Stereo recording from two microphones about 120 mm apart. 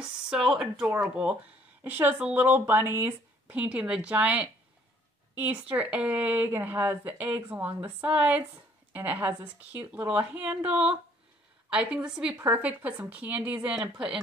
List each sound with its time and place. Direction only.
0.5 s speech: 5° right (ahead or behind)